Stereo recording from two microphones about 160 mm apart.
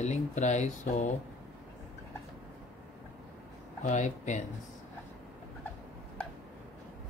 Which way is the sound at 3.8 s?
50° left (ahead or behind).